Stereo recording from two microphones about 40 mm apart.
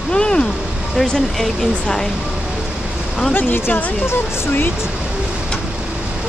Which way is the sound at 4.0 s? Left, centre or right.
Left.